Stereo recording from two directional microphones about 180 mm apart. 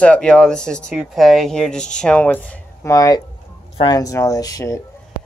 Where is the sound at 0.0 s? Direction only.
5° left (ahead or behind).